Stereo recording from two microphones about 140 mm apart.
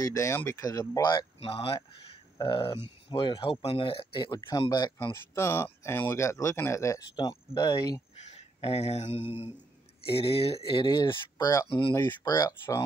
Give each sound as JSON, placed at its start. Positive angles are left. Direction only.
{"t": 0.0, "sound": "speech", "side_deg": 20}
{"t": 1.4, "sound": "speech", "side_deg": 40}
{"t": 5.1, "sound": "speech", "side_deg": 20}
{"t": 8.2, "sound": "speech", "side_deg": 55}